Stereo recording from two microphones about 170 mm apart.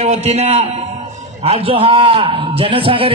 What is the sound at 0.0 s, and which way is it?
A man's voice, 40° right (ahead or behind).